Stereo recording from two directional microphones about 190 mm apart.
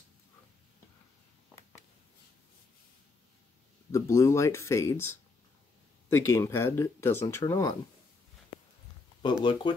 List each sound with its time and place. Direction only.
3.9 s speech: 15° left (ahead or behind)
9.4 s speech: 25° left (ahead or behind)